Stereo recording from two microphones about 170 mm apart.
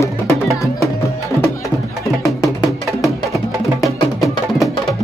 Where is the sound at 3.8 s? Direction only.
20° left (ahead or behind).